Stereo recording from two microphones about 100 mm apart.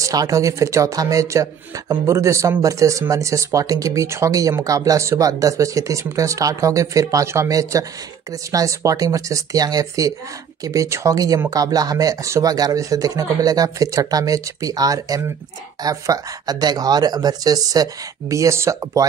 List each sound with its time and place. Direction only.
0.0 s speech: 35° right (ahead or behind)